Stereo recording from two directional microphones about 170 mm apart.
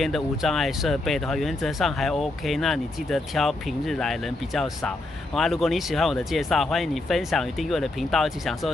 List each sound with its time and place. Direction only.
0.0 s speech: centre (ahead or behind)